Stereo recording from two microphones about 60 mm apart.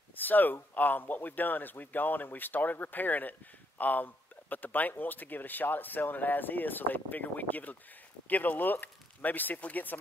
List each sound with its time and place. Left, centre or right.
0.1 s speech: left